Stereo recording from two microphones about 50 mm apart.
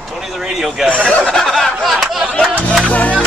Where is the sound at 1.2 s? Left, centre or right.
Centre.